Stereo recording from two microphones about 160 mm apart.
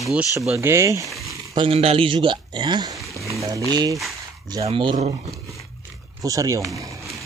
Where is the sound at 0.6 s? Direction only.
15° right (ahead or behind).